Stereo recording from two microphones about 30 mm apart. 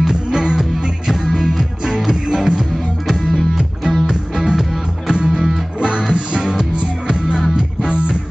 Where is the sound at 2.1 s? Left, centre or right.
Right.